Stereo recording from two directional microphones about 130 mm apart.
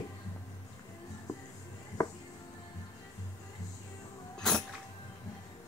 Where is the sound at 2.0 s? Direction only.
25° left (ahead or behind).